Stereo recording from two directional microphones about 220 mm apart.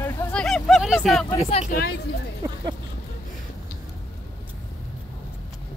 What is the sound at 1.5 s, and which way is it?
Speech, 25° left (ahead or behind).